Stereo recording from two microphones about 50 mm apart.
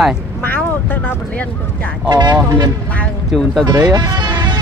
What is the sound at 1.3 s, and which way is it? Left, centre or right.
Vehicle, left.